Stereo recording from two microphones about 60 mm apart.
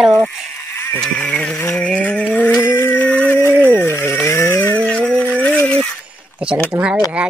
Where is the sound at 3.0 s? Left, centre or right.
Left.